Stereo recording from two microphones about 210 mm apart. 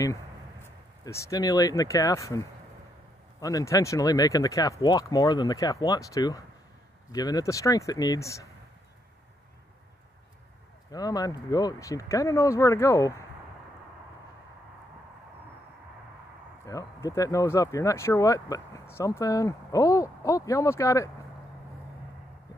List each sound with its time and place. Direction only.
0.0 s speech: 15° left (ahead or behind)
10.9 s speech: 15° left (ahead or behind)
16.6 s speech: 15° left (ahead or behind)